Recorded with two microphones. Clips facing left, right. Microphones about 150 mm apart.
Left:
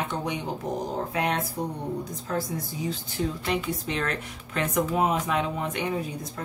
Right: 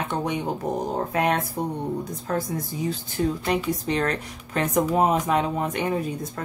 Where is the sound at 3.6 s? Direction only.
40° right (ahead or behind).